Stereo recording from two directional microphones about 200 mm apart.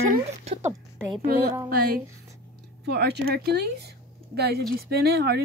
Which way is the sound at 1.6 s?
50° right (ahead or behind).